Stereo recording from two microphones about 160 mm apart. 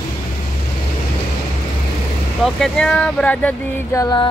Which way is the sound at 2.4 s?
5° left (ahead or behind).